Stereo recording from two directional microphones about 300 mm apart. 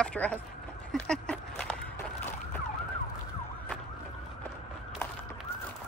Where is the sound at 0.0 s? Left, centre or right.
Centre.